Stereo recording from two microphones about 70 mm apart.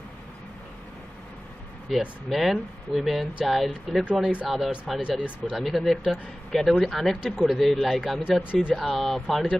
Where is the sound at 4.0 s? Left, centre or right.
Centre.